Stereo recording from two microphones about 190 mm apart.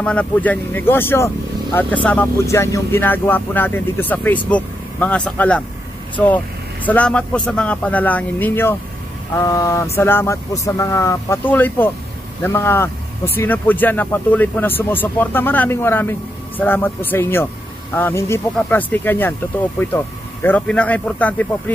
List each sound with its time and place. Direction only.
0.0 s speech: 5° left (ahead or behind)